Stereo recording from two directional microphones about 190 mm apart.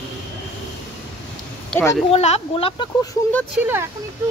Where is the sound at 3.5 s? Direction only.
10° right (ahead or behind).